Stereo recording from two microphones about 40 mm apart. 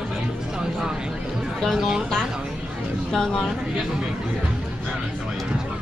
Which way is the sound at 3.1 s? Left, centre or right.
Centre.